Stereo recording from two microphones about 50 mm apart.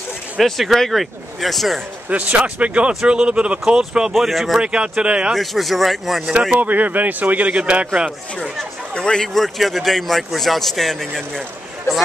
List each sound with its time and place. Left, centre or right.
0.4 s speech: centre
2.0 s speech: right; by 4.1 s centre
4.1 s speech: centre
4.6 s speech: centre
5.3 s speech: centre
6.6 s speech: right
8.9 s speech: centre